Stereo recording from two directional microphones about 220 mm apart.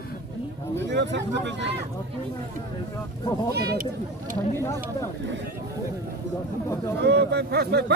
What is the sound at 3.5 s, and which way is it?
Speech, 45° right (ahead or behind).